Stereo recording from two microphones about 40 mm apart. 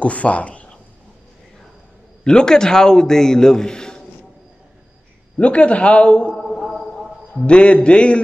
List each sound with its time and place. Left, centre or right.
0.0 s speech: left
2.2 s a man's voice: centre
5.4 s a man's voice: left
6.3 s a sound: centre
7.4 s a man's voice: left